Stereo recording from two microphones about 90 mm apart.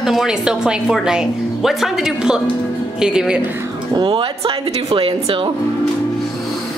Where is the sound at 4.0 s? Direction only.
70° right (ahead or behind).